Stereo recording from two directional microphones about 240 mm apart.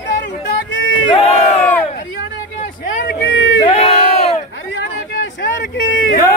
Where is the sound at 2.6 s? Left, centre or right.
Left.